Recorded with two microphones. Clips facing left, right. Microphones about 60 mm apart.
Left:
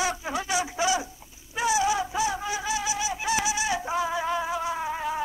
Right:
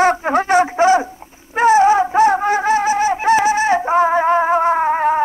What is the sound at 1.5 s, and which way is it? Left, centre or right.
Fowl, right.